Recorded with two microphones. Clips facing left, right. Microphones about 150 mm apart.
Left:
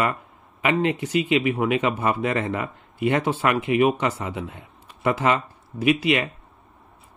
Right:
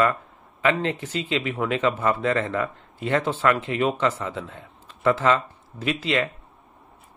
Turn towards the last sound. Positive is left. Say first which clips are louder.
# left 4 dB
turn(degrees=15)  # may be behind; listen again after turning